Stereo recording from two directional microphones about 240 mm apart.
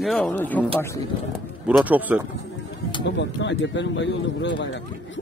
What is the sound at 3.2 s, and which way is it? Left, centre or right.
Speech, left.